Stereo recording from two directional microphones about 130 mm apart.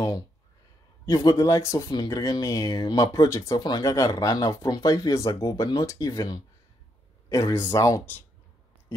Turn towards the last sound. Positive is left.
turn(degrees=25)  # may be behind; listen again after turning